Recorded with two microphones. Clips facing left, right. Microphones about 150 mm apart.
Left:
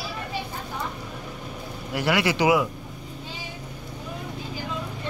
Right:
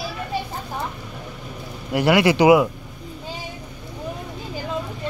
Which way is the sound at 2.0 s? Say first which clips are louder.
Right 7 dB; 15° right (ahead or behind).